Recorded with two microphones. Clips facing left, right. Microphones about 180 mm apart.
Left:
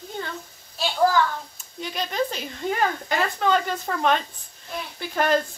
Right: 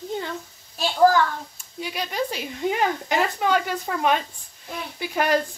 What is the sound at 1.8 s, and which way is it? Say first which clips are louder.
Speech: left 1 dB; 10° right (ahead or behind).